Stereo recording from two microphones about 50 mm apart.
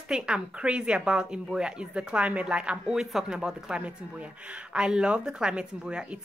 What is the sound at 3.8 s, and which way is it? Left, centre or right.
A woman's voice, right.